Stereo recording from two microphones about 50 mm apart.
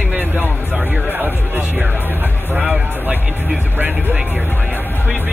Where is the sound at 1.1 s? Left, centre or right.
Right.